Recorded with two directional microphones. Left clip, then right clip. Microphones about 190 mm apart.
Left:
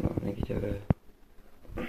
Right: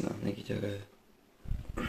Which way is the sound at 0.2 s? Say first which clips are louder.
Left 2 dB; 10° right (ahead or behind).